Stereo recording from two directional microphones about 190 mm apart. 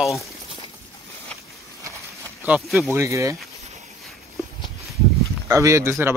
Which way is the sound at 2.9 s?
15° right (ahead or behind).